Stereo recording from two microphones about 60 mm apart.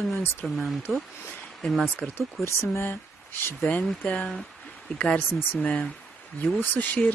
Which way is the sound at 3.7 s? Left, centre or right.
Left.